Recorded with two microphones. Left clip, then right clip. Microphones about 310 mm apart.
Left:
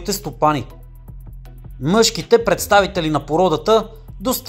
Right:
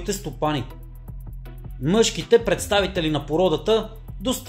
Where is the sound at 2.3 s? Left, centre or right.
Centre.